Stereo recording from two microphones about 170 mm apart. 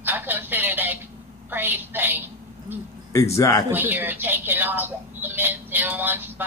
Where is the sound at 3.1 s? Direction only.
15° left (ahead or behind).